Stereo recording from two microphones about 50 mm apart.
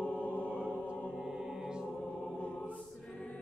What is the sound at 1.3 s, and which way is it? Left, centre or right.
Music, centre.